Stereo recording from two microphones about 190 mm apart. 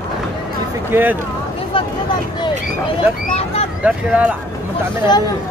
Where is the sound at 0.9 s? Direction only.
10° right (ahead or behind).